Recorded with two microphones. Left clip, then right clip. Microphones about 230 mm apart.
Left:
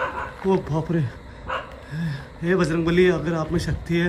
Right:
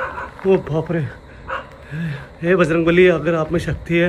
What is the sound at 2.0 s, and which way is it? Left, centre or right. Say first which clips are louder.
A man's voice: right 5 dB; centre.